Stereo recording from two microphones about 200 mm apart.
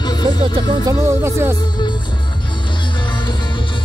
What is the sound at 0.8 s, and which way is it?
Music, 15° right (ahead or behind).